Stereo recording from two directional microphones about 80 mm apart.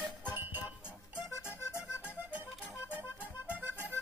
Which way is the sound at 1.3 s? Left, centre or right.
Left.